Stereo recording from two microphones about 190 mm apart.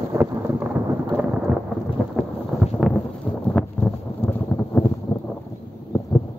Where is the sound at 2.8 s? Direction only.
5° left (ahead or behind).